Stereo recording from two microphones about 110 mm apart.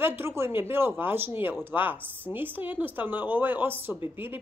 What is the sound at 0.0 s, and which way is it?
Speech, 20° right (ahead or behind).